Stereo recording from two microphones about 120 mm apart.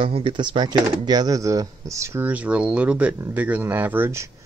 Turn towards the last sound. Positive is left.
turn(degrees=-20)  # may be behind; listen again after turning